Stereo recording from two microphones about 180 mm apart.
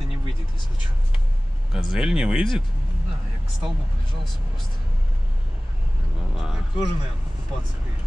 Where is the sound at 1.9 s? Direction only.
5° right (ahead or behind).